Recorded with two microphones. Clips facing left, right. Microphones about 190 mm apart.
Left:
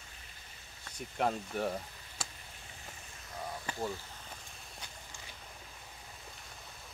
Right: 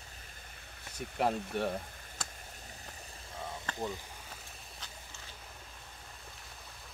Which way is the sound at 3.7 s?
10° left (ahead or behind).